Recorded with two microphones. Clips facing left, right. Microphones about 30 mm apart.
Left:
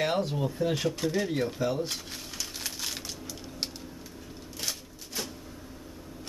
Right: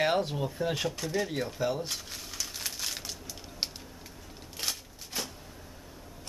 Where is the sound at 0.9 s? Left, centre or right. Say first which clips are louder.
Left 3 dB; centre.